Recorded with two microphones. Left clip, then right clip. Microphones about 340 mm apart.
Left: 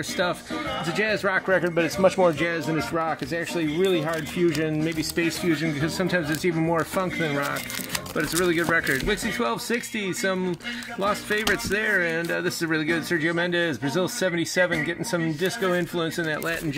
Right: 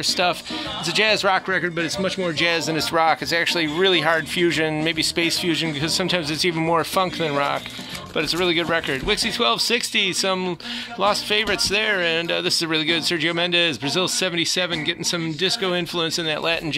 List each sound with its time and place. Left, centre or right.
0.9 s speech: centre
3.5 s speech: centre
5.6 s speech: centre
11.3 s speech: centre